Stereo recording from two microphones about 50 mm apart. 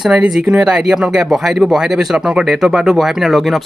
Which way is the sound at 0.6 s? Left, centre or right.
Centre.